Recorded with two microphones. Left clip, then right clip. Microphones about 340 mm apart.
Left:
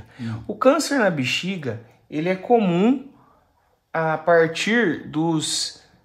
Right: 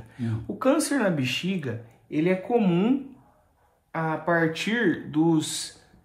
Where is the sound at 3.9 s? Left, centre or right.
Left.